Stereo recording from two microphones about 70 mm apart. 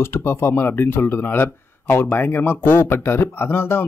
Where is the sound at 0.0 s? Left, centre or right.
Left.